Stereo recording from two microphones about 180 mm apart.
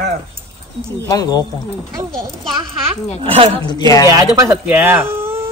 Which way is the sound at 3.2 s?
30° right (ahead or behind).